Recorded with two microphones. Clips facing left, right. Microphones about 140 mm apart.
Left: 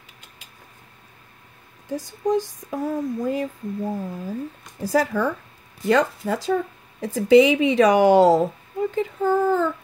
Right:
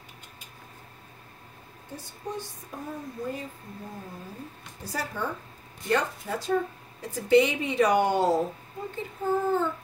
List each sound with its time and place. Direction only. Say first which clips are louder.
2.0 s speech: left 14 dB; 90° left